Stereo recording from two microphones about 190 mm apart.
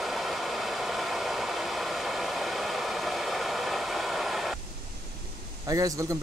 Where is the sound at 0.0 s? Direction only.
Centre (ahead or behind).